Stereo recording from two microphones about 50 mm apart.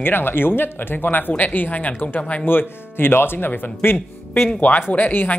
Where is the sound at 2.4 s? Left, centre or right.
Left.